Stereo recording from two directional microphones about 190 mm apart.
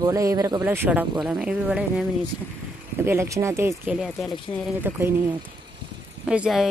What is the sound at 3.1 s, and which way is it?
Speech, 15° right (ahead or behind).